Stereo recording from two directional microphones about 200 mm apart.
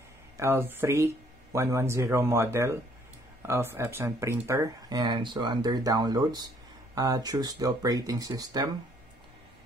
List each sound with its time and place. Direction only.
0.4 s speech: 10° right (ahead or behind)